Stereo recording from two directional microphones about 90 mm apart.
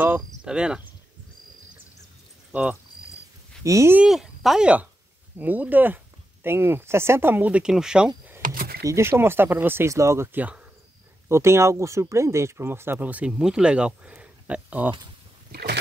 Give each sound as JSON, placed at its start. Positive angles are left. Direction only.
{"t": 0.4, "sound": "speech", "side_deg": -10}
{"t": 2.5, "sound": "speech", "side_deg": -15}
{"t": 3.6, "sound": "speech", "side_deg": -35}
{"t": 4.1, "sound": "speech", "side_deg": 0}
{"t": 5.4, "sound": "speech", "side_deg": -20}
{"t": 8.8, "sound": "speech", "side_deg": -35}